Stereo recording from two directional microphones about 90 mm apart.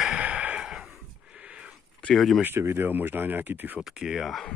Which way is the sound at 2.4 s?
25° right (ahead or behind).